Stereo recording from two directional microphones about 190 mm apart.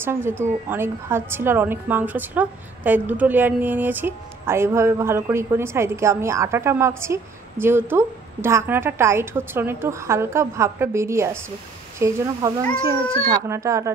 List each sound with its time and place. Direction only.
0.0 s a woman's voice: 10° right (ahead or behind)